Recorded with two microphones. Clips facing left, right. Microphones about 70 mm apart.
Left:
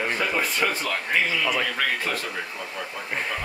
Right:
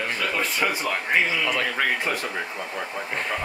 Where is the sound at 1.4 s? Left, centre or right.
Centre.